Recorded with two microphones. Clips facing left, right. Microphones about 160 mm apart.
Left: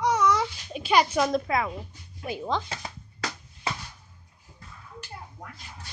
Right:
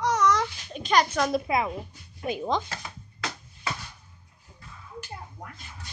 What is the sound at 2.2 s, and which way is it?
Speech, 15° right (ahead or behind).